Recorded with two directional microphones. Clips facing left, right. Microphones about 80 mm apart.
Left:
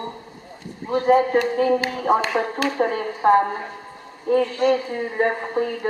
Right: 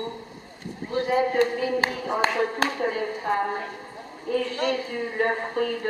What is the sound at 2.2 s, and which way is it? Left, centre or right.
Speech, right.